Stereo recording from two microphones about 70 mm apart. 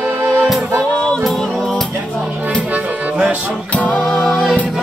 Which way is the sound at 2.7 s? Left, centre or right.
Right.